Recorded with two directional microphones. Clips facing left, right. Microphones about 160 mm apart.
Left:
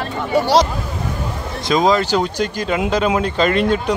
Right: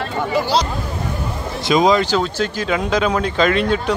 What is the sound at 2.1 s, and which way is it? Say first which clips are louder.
Speech: left 1 dB; 10° left (ahead or behind).